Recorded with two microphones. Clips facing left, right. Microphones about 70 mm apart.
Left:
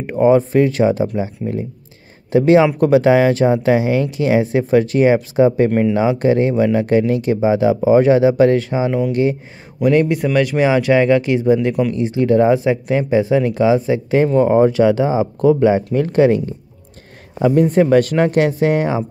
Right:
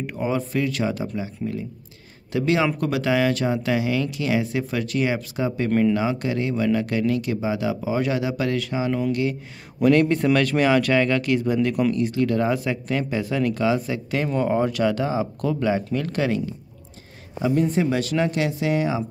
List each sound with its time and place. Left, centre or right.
0.0 s speech: left
9.8 s speech: centre
17.6 s speech: left